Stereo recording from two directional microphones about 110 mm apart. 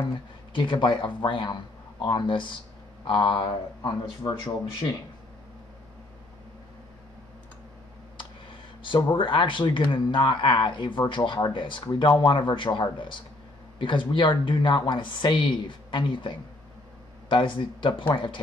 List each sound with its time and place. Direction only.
0.5 s speech: 50° left (ahead or behind)
4.2 s speech: 25° left (ahead or behind)
8.8 s speech: 50° left (ahead or behind)